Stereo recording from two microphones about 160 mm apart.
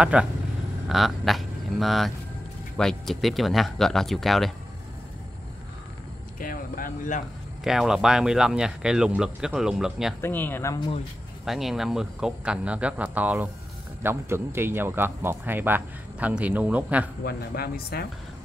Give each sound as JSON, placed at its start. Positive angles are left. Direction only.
{"t": 0.0, "sound": "speech", "side_deg": -5}
{"t": 6.4, "sound": "a sound", "side_deg": 60}
{"t": 7.6, "sound": "speech", "side_deg": -5}
{"t": 10.2, "sound": "speech", "side_deg": 10}
{"t": 11.4, "sound": "speech", "side_deg": 0}
{"t": 17.2, "sound": "speech", "side_deg": 80}